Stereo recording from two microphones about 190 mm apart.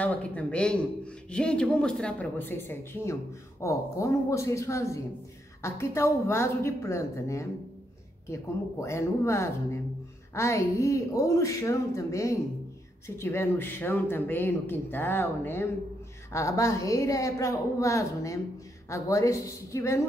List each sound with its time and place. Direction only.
0.0 s speech: 5° left (ahead or behind)